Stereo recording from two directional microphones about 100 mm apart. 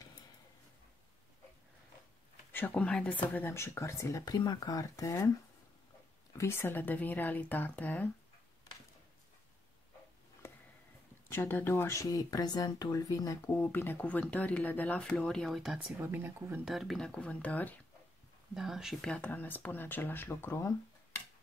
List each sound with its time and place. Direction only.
2.7 s speech: 10° left (ahead or behind); by 4.2 s 25° left (ahead or behind)
4.2 s speech: 45° left (ahead or behind)
6.3 s speech: 25° left (ahead or behind)
10.4 s a sound: 25° left (ahead or behind)
11.2 s speech: 20° left (ahead or behind)
13.5 s speech: 20° left (ahead or behind); by 15.8 s centre (ahead or behind)
16.0 s speech: 25° right (ahead or behind)
16.6 s speech: centre (ahead or behind); by 17.7 s 15° left (ahead or behind)
18.5 s speech: 5° right (ahead or behind)
19.0 s speech: 15° left (ahead or behind)